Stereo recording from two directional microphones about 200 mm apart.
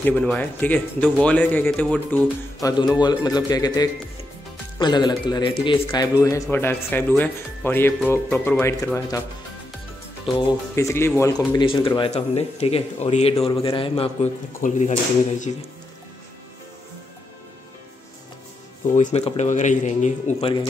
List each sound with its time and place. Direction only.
0.0 s speech: 5° left (ahead or behind)
2.6 s a man's voice: 20° left (ahead or behind)
10.3 s speech: 15° left (ahead or behind); by 15.5 s 35° left (ahead or behind)
18.9 s speech: 35° left (ahead or behind)